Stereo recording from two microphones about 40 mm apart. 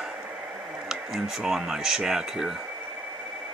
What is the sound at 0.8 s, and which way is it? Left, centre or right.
Speech, centre.